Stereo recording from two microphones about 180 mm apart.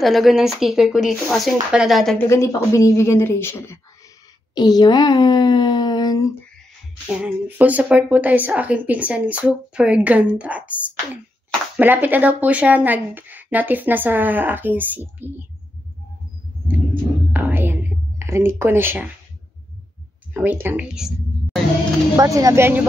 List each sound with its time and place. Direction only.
0.0 s speech: centre (ahead or behind)
2.2 s speech: 15° left (ahead or behind)
7.1 s a woman's voice: 5° right (ahead or behind)
11.8 s a woman's voice: 10° right (ahead or behind)
17.3 s music: 10° right (ahead or behind)
18.2 s a woman's voice: 15° right (ahead or behind)
20.3 s a woman's voice: 10° right (ahead or behind)
22.1 s a woman's voice: 20° right (ahead or behind)